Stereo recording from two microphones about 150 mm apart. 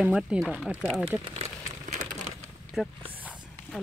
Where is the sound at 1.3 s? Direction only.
50° right (ahead or behind).